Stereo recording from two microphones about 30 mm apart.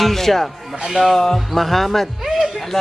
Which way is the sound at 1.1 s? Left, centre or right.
Centre.